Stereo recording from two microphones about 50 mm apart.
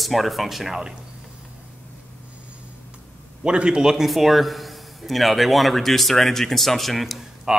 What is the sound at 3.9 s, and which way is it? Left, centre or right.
Speech, centre.